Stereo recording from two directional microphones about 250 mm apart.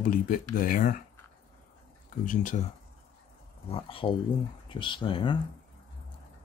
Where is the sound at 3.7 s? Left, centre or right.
Left.